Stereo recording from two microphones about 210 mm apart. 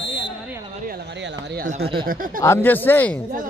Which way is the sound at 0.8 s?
45° right (ahead or behind).